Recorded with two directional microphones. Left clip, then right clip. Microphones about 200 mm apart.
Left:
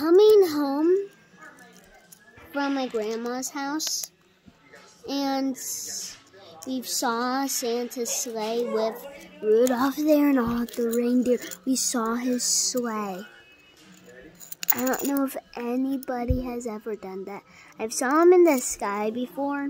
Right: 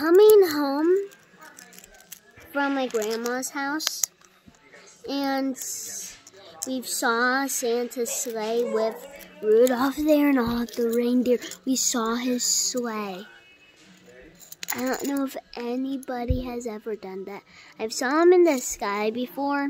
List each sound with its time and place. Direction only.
0.0 s a sound: 10° left (ahead or behind)
2.5 s a child's voice: 5° left (ahead or behind)
5.0 s a child's voice: 10° left (ahead or behind)
14.6 s a child's voice: 15° left (ahead or behind); by 19.7 s 5° right (ahead or behind)